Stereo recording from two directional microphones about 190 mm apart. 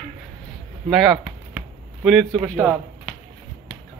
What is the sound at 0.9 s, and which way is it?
Chop, 5° right (ahead or behind).